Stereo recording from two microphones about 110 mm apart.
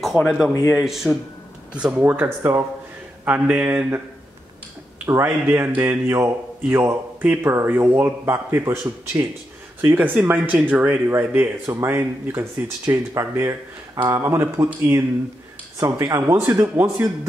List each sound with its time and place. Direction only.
0.7 s speech: 5° right (ahead or behind)
5.0 s speech: 20° right (ahead or behind)